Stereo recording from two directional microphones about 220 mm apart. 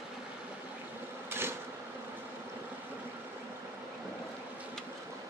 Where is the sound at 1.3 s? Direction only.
10° right (ahead or behind).